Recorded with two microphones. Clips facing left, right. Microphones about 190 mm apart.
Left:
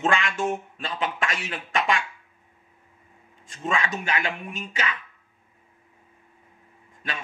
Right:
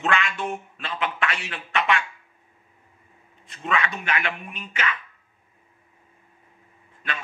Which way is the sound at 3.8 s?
40° left (ahead or behind).